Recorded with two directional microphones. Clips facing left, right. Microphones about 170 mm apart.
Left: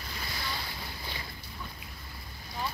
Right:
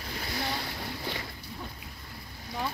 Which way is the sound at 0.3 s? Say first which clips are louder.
Right 6 dB; 65° right (ahead or behind).